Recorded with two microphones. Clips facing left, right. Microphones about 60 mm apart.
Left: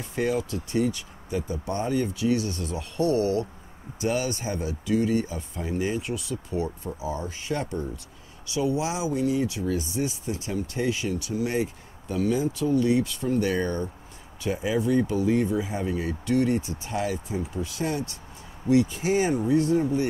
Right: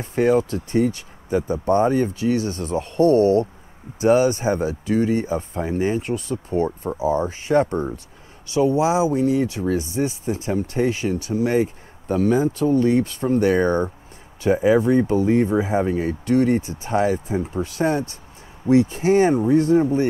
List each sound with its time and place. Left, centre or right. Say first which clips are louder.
0.0 s speech: right 8 dB; right